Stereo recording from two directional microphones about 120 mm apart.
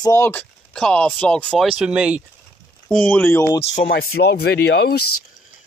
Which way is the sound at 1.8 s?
10° right (ahead or behind).